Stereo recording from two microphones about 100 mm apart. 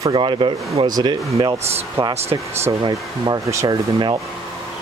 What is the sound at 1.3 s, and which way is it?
Speech, 35° right (ahead or behind).